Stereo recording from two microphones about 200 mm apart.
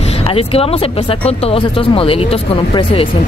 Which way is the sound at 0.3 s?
30° left (ahead or behind).